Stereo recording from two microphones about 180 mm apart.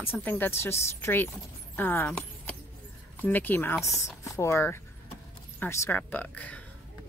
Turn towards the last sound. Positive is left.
turn(degrees=10)  # may be behind; listen again after turning